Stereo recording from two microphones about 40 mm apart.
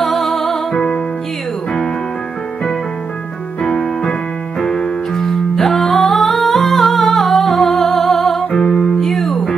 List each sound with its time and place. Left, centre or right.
0.0 s music: centre
3.6 s keyboard: centre
5.1 s music: centre
8.5 s music: left
9.0 s music: centre